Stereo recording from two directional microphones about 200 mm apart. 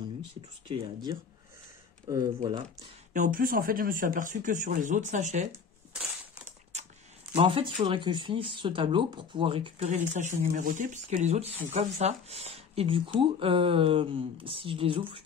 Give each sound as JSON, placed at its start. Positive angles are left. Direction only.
{"t": 0.7, "sound": "speech", "side_deg": -25}
{"t": 3.1, "sound": "speech", "side_deg": -45}
{"t": 5.5, "sound": "a sound", "side_deg": 0}
{"t": 7.3, "sound": "speech", "side_deg": -25}